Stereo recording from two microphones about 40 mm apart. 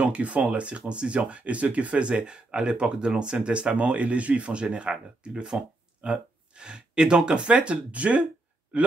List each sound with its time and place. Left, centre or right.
0.0 s speech: right